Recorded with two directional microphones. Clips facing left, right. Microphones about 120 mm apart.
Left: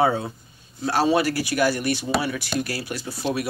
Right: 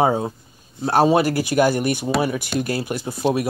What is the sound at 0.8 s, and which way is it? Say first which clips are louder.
Speech: right 4 dB; 45° right (ahead or behind).